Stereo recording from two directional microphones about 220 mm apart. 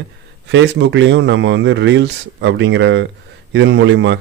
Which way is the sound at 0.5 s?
55° right (ahead or behind).